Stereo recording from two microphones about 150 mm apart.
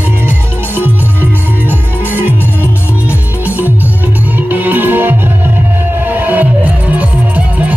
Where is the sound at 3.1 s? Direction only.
10° right (ahead or behind).